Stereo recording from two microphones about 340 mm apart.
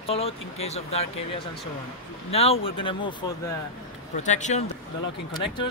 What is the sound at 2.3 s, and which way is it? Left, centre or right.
Speech, centre.